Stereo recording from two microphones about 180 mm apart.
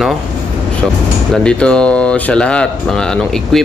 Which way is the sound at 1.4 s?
5° left (ahead or behind).